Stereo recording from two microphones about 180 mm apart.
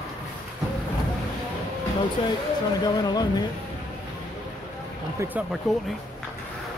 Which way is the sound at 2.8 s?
20° left (ahead or behind).